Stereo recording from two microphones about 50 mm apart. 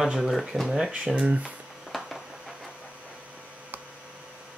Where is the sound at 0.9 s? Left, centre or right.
Right.